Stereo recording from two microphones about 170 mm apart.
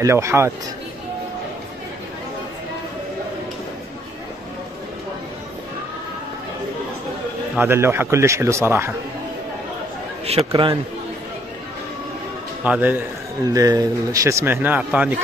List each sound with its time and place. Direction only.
0.0 s speech: 15° right (ahead or behind)
7.5 s speech: 15° right (ahead or behind)
10.2 s speech: 35° right (ahead or behind)
12.6 s speech: 10° right (ahead or behind)
13.5 s speech: 20° right (ahead or behind)